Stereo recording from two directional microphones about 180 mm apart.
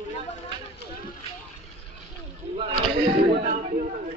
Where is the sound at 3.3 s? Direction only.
50° right (ahead or behind).